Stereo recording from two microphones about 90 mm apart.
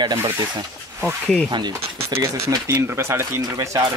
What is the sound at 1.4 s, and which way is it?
Speech, 55° right (ahead or behind).